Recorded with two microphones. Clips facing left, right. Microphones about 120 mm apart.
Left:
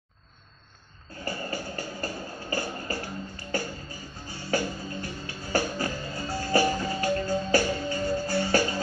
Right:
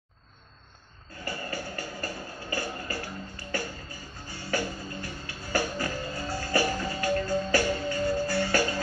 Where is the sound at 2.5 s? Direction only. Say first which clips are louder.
Left 2 dB; 30° left (ahead or behind).